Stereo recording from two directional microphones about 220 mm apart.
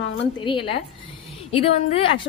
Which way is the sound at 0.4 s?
20° left (ahead or behind).